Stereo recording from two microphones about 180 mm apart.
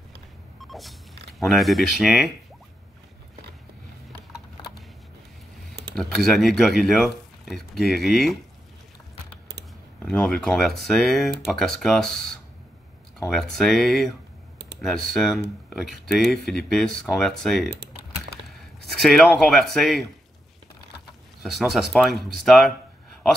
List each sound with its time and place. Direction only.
0.7 s a sound: centre (ahead or behind)
1.4 s speech: centre (ahead or behind)
5.9 s speech: 5° left (ahead or behind)
10.0 s speech: 5° left (ahead or behind)
19.4 s speech: centre (ahead or behind)
21.4 s speech: centre (ahead or behind)